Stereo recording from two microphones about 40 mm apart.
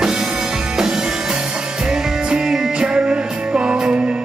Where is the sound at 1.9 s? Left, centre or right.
Centre.